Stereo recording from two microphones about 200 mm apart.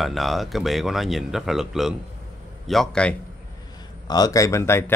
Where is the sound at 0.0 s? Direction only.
Centre (ahead or behind).